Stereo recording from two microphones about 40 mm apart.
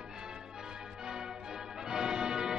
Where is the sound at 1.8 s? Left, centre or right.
Centre.